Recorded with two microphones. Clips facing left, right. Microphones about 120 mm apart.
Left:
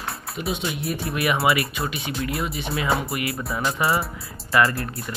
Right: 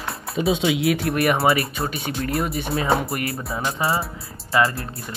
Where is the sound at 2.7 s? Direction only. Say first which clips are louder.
Right 2 dB; 30° right (ahead or behind).